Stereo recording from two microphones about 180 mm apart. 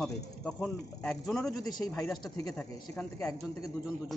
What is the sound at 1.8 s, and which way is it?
Speech, 20° left (ahead or behind).